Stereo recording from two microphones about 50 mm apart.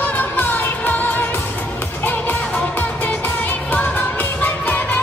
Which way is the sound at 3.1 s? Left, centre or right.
Left.